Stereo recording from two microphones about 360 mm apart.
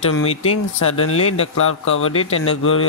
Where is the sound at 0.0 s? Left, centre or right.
Left.